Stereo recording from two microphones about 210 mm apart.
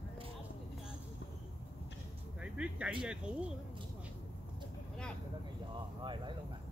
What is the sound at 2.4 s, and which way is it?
Music, 5° right (ahead or behind).